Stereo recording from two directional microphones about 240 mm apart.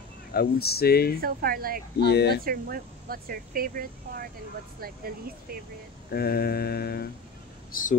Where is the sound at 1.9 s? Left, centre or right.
Left.